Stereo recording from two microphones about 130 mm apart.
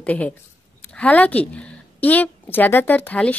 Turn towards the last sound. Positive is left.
turn(degrees=10)  # may be behind; listen again after turning